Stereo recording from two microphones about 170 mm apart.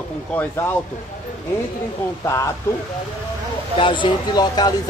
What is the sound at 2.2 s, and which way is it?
Speech, 15° left (ahead or behind).